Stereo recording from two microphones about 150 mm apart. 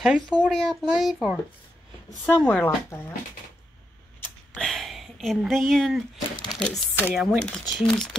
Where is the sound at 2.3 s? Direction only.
10° left (ahead or behind).